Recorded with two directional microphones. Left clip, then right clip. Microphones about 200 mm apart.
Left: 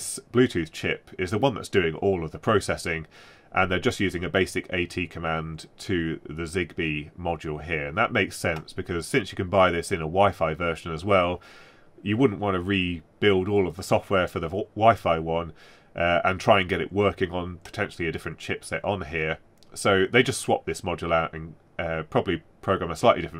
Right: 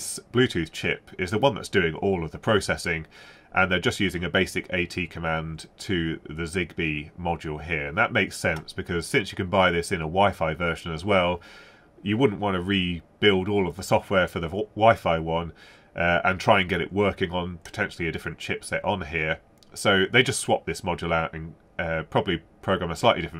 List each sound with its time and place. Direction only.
0.1 s speech: 40° left (ahead or behind)